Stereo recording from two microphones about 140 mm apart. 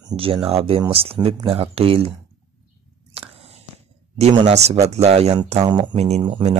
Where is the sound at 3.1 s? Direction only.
45° right (ahead or behind).